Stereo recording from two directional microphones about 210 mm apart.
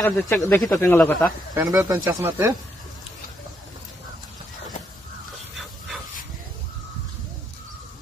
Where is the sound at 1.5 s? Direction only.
15° right (ahead or behind).